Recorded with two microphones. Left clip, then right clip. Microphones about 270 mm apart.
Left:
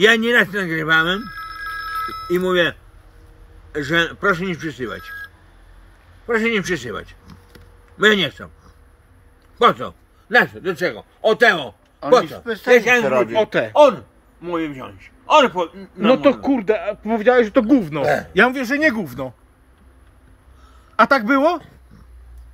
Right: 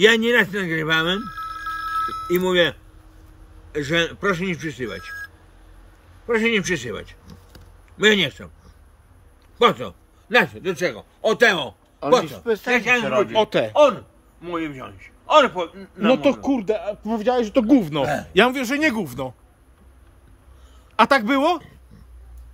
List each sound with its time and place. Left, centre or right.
0.0 s speech: centre
1.2 s telephone bell ringing: right
2.3 s speech: centre
3.7 s speech: centre
9.6 s a man's voice: centre
12.7 s a man's voice: left
13.3 s speech: centre
13.7 s a man's voice: left
16.4 s speech: centre
20.9 s speech: centre